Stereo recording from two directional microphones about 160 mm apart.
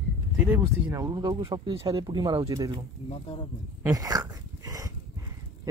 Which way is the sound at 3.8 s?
20° right (ahead or behind).